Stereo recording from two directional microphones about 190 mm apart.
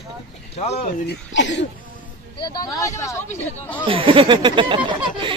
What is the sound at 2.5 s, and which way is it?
Speech, 20° left (ahead or behind).